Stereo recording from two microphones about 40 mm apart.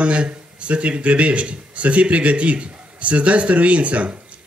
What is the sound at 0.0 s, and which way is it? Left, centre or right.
Speech, right.